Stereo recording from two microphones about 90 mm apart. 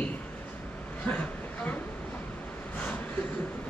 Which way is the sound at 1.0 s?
15° left (ahead or behind).